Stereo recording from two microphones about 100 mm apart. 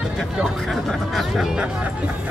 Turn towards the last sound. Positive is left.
turn(degrees=-5)  # may be behind; listen again after turning